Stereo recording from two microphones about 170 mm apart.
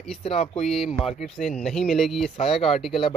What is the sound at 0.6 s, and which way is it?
Speech, centre (ahead or behind).